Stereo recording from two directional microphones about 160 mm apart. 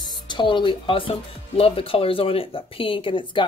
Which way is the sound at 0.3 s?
30° left (ahead or behind).